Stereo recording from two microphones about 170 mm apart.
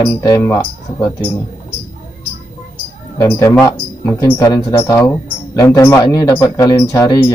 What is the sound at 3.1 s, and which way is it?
Speech, 20° left (ahead or behind).